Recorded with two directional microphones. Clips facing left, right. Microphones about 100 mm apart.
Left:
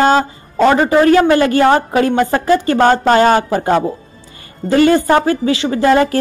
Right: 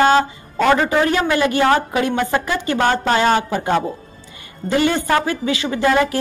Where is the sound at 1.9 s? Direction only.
40° left (ahead or behind).